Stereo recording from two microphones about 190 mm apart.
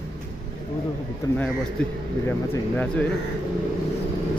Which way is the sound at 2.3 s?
10° left (ahead or behind).